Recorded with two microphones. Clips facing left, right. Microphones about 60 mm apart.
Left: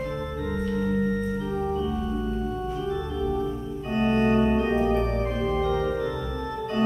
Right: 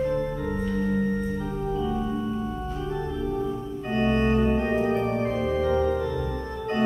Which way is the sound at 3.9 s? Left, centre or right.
Centre.